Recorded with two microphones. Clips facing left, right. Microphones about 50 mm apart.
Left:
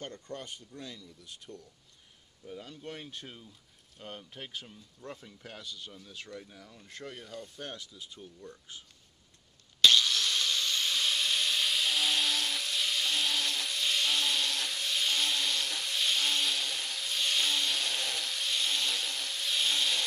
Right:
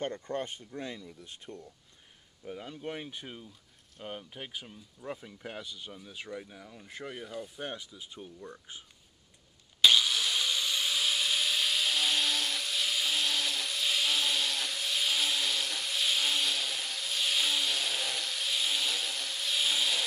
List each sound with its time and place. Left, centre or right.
0.0 s speech: right
9.8 s wood: centre